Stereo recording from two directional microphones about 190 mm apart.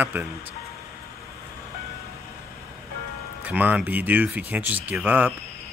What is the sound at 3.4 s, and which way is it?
Speech, 10° right (ahead or behind).